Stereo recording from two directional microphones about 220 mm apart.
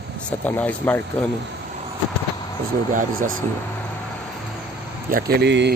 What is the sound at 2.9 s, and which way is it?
Speech, 40° right (ahead or behind).